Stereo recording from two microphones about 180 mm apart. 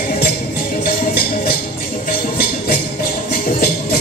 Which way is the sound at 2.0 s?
50° left (ahead or behind).